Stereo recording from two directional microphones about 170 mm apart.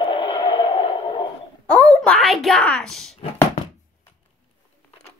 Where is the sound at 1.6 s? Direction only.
5° left (ahead or behind).